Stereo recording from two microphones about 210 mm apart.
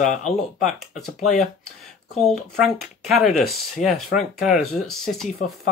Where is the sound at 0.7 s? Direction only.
Centre (ahead or behind).